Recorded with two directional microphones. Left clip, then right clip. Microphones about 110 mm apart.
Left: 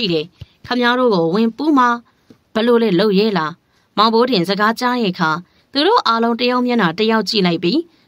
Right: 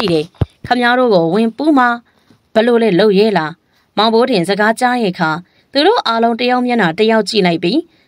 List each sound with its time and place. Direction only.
0.0 s a woman's voice: 50° right (ahead or behind); by 7.8 s 35° right (ahead or behind)